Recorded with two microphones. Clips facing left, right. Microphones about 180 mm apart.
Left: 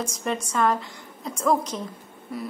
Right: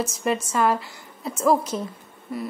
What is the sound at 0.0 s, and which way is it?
A woman's voice, 5° right (ahead or behind).